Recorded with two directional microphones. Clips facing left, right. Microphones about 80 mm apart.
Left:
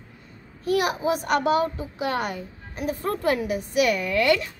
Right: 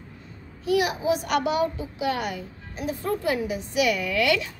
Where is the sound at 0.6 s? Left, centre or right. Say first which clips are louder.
Even; left.